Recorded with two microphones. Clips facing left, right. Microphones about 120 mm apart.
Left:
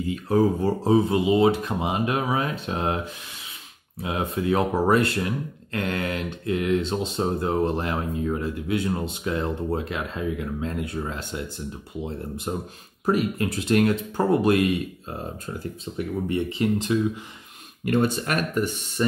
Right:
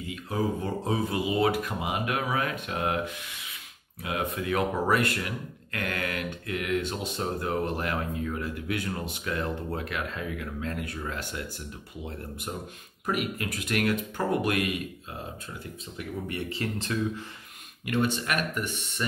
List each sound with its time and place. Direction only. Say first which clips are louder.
0.1 s speech: left 8 dB; 35° left (ahead or behind)
4.0 s speech: left 5 dB; 30° left (ahead or behind)
16.3 s speech: left 10 dB; 20° left (ahead or behind)
17.8 s speech: left 5 dB; 40° left (ahead or behind)